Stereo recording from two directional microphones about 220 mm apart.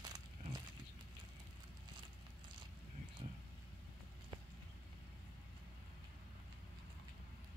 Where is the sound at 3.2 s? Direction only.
25° right (ahead or behind).